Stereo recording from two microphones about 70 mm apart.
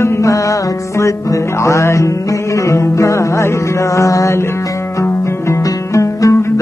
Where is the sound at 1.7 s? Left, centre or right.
Left.